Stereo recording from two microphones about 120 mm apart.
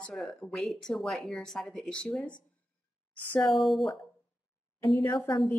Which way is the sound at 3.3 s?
5° left (ahead or behind).